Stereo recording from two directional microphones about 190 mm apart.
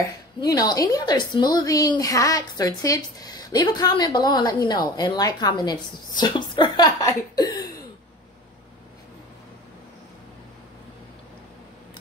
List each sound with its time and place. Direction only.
0.4 s a woman's voice: 20° left (ahead or behind)